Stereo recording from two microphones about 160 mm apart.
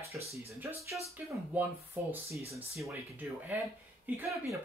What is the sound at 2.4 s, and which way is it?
Speech, 40° right (ahead or behind).